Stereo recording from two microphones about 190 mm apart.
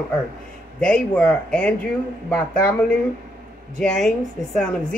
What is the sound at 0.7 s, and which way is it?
Speech, 5° left (ahead or behind).